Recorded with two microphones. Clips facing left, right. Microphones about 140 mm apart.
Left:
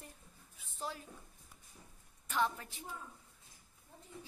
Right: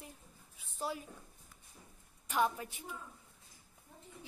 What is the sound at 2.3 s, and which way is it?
Speech, 15° right (ahead or behind).